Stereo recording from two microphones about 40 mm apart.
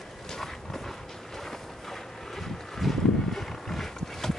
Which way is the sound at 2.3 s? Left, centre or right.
Centre.